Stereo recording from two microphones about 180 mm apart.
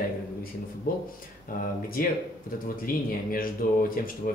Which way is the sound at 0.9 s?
50° left (ahead or behind).